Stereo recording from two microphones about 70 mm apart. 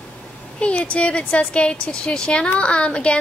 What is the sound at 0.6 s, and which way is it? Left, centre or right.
A woman's voice, centre.